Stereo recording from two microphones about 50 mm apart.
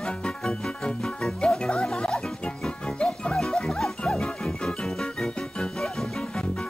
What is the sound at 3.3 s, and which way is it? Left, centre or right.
Music, centre.